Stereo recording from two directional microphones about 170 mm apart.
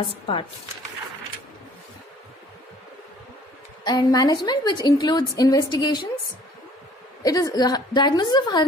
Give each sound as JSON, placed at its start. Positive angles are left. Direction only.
{"t": 3.8, "sound": "a woman's voice", "side_deg": 25}
{"t": 7.2, "sound": "a woman's voice", "side_deg": 20}